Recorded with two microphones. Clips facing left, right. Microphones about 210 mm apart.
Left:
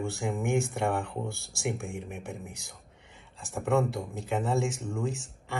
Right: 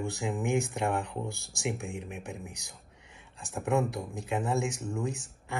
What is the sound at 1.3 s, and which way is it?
Speech, 15° right (ahead or behind).